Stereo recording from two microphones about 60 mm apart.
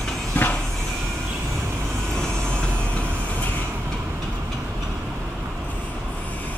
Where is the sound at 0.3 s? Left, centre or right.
Left.